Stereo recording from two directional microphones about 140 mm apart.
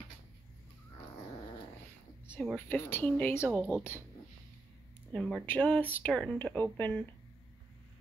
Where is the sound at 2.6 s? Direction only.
15° left (ahead or behind).